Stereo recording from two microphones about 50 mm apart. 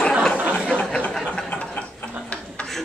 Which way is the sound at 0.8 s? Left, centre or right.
Left.